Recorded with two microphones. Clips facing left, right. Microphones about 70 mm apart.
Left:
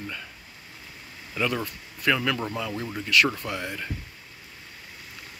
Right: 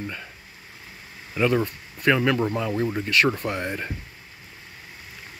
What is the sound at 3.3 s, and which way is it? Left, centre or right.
Speech, right.